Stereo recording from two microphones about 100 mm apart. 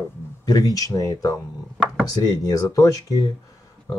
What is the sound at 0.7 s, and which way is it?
Speech, 35° left (ahead or behind).